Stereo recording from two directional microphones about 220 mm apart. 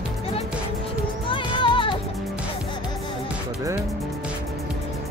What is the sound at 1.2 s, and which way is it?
Music, 20° left (ahead or behind).